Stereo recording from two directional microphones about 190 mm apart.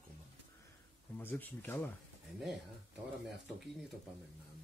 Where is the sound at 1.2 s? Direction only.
10° left (ahead or behind).